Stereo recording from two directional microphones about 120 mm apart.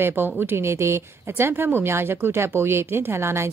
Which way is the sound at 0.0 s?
20° right (ahead or behind).